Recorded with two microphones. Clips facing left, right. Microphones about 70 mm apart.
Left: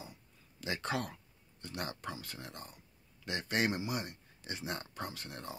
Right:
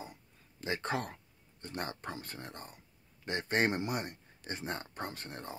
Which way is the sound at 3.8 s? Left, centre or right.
Right.